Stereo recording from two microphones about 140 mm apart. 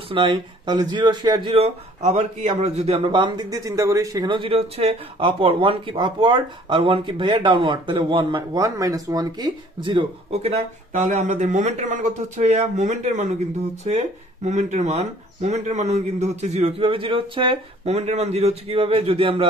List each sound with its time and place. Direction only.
0.1 s speech: 35° right (ahead or behind)
11.0 s speech: 50° right (ahead or behind)
17.9 s speech: 50° right (ahead or behind)